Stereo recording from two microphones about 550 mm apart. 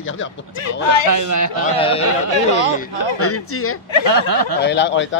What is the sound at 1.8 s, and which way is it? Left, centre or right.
Speech, centre.